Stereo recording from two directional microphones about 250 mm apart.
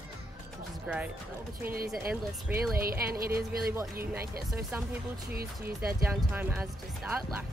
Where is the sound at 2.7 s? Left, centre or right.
Right.